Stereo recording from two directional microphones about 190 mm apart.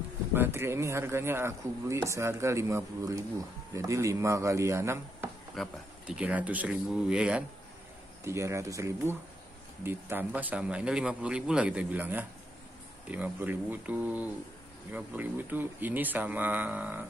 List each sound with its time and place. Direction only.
0.3 s speech: 10° right (ahead or behind)